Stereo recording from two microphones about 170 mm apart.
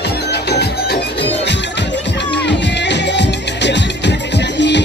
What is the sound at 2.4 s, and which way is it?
Music, 90° left.